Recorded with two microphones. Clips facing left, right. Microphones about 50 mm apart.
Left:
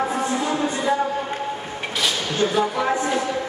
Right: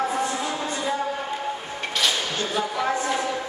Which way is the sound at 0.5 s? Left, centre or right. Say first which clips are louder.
Left 5 dB; centre.